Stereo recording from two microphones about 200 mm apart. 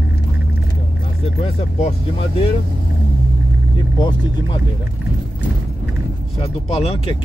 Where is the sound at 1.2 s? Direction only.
30° left (ahead or behind).